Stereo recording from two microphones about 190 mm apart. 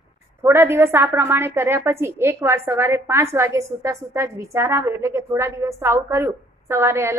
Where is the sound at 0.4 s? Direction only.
15° right (ahead or behind).